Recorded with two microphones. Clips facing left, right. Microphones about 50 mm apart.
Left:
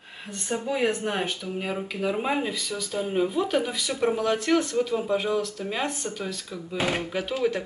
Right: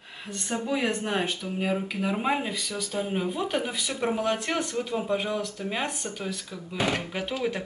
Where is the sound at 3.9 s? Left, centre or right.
Centre.